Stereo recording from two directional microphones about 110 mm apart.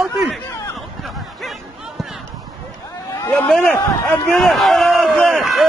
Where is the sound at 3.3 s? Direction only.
10° left (ahead or behind).